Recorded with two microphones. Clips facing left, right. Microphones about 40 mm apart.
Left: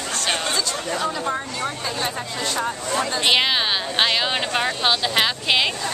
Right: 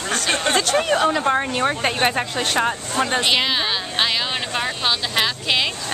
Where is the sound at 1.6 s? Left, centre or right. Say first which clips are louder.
Right 6 dB; right.